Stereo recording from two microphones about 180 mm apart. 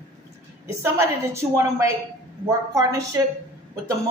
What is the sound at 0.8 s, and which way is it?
A woman's voice, 15° right (ahead or behind).